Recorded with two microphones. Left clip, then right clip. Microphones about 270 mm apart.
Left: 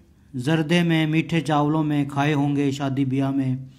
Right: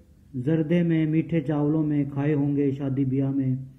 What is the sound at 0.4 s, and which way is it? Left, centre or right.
A man's voice, centre.